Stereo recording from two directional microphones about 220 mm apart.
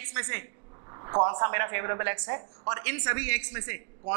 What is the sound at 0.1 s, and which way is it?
A woman's voice, 15° right (ahead or behind).